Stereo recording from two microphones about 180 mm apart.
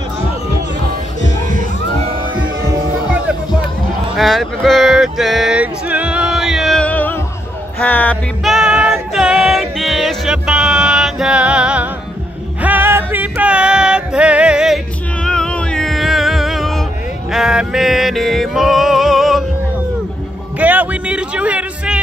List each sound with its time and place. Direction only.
4.2 s male singing: centre (ahead or behind)
7.8 s music: 10° left (ahead or behind)
20.5 s a sound: 10° right (ahead or behind)